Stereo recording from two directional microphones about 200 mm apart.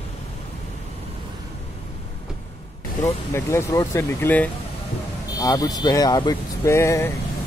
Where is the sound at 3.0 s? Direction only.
15° left (ahead or behind).